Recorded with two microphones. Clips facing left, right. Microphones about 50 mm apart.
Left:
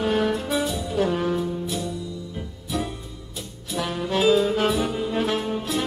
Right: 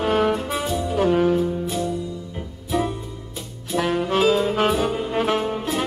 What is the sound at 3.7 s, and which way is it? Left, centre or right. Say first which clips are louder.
Saxophone: right 4 dB; right.